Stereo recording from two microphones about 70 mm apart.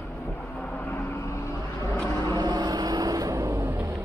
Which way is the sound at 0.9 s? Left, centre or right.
Left.